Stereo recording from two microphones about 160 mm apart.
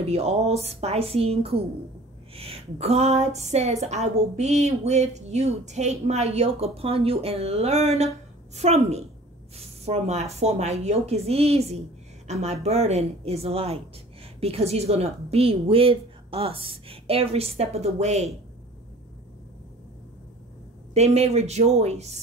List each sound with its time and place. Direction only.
0.0 s a woman's voice: 40° right (ahead or behind)
20.9 s a woman's voice: 45° right (ahead or behind)